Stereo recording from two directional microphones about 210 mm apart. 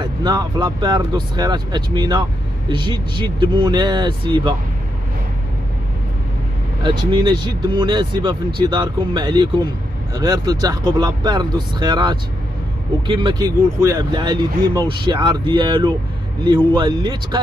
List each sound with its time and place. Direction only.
0.0 s speech: 20° right (ahead or behind)
6.8 s speech: 20° right (ahead or behind)